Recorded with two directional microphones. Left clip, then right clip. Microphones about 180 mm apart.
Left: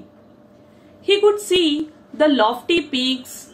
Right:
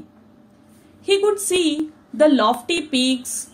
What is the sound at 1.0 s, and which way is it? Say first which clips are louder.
A woman's voice: left 2 dB; 55° right (ahead or behind).